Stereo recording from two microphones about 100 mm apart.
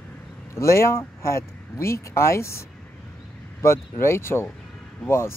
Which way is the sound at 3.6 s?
25° left (ahead or behind).